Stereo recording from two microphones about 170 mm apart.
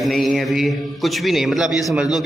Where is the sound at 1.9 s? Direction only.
5° right (ahead or behind).